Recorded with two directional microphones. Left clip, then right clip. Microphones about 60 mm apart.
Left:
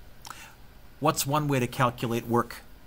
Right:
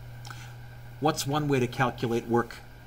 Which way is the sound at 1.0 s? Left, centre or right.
Left.